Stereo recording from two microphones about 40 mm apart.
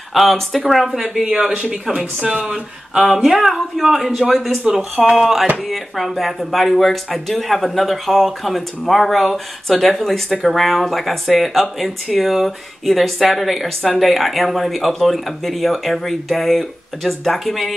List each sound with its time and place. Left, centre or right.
0.1 s speech: centre
3.0 s speech: centre
4.7 s speech: right
5.0 s speech: centre